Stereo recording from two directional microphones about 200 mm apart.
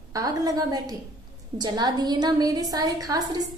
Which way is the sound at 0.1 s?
20° right (ahead or behind).